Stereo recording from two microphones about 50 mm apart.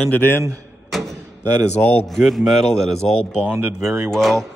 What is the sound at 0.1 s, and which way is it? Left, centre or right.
Speech, left.